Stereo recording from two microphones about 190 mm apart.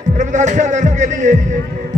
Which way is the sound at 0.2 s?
40° right (ahead or behind).